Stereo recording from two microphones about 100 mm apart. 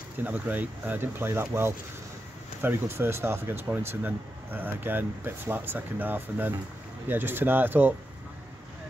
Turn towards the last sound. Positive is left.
turn(degrees=-20)  # may be behind; listen again after turning